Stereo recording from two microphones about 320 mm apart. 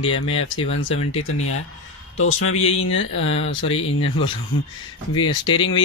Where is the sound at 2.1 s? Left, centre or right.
Left.